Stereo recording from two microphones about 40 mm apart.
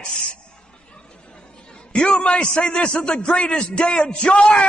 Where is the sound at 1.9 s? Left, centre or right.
Left.